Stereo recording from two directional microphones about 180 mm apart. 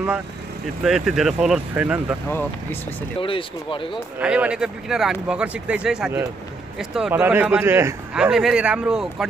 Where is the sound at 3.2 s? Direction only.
30° left (ahead or behind).